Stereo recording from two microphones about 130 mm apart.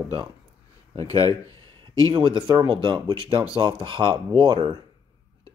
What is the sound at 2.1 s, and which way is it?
Speech, 35° right (ahead or behind).